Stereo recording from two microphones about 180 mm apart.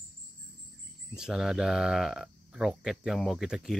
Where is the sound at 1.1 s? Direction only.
5° right (ahead or behind).